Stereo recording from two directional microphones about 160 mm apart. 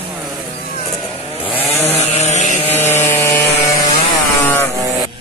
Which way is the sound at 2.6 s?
15° left (ahead or behind).